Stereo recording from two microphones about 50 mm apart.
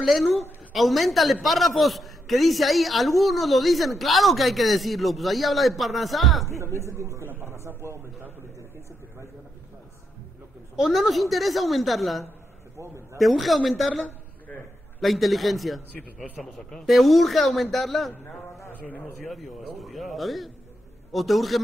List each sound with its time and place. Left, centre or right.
0.0 s a woman's voice: centre
6.8 s speech: right
7.2 s speech: right
7.5 s speech: right
10.8 s a woman's voice: centre
12.7 s speech: right
13.2 s a woman's voice: centre
16.8 s a woman's voice: centre
18.7 s a man's voice: left
19.2 s a woman's voice: centre